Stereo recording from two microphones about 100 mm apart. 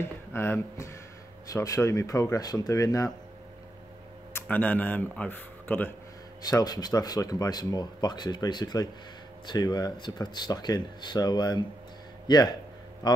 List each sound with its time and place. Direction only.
0.0 s speech: 25° left (ahead or behind)
4.3 s speech: 20° left (ahead or behind)
6.4 s speech: 40° left (ahead or behind)